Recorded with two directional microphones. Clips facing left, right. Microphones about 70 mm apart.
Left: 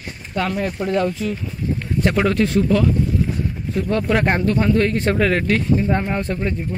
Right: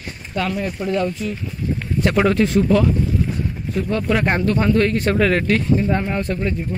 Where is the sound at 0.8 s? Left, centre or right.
Left.